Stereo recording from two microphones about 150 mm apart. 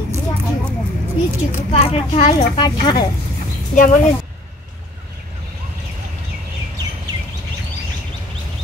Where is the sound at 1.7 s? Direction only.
40° left (ahead or behind).